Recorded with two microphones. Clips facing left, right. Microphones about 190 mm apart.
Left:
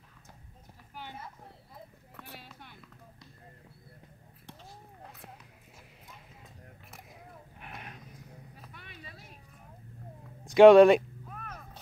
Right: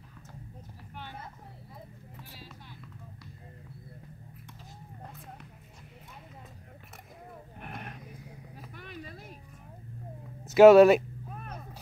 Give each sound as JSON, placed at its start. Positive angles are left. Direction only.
{"t": 2.1, "sound": "vehicle", "side_deg": 60}
{"t": 7.6, "sound": "roaring cats", "side_deg": -50}
{"t": 8.7, "sound": "a sound", "side_deg": -45}
{"t": 10.4, "sound": "speech", "side_deg": -5}
{"t": 11.2, "sound": "whip", "side_deg": -30}